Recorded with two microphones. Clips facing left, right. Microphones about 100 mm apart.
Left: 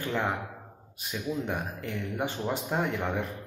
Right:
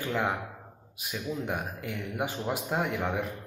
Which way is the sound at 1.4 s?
10° right (ahead or behind).